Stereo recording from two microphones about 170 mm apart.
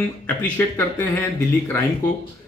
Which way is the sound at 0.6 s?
15° left (ahead or behind).